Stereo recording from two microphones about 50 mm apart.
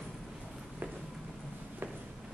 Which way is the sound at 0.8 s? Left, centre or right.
Right.